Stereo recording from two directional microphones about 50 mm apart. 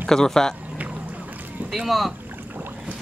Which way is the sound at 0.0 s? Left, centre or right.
Centre.